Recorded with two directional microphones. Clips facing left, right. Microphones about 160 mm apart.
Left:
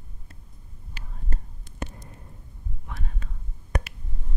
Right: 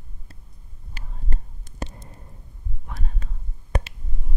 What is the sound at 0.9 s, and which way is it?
Whispering, 40° right (ahead or behind).